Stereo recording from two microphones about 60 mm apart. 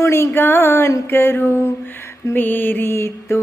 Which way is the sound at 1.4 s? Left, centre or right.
Left.